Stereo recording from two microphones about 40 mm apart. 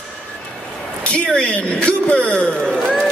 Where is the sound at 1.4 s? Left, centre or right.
Left.